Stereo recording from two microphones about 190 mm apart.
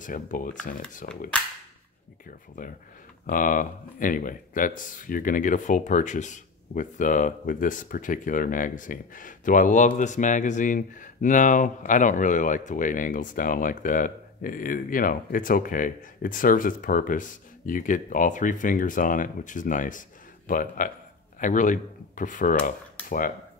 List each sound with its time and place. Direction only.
0.0 s speech: 45° left (ahead or behind)
3.3 s speech: 45° left (ahead or behind)